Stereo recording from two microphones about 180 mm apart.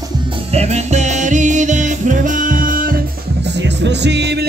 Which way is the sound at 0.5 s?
35° right (ahead or behind).